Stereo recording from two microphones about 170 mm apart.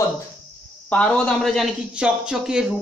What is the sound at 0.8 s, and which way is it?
A man's voice, 5° left (ahead or behind).